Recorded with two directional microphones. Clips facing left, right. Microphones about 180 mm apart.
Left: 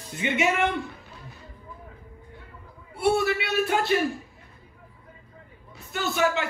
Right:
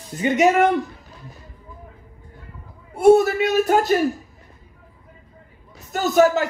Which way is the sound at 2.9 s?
45° right (ahead or behind).